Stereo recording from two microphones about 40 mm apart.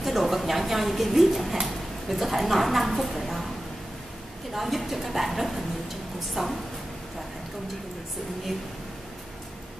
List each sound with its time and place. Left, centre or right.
0.0 s a woman's voice: centre
4.5 s a woman's voice: centre